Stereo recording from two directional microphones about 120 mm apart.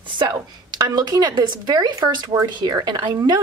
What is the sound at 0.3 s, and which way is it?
Speech, 30° right (ahead or behind).